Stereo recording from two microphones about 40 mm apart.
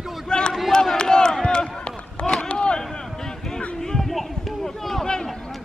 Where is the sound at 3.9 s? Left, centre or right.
Centre.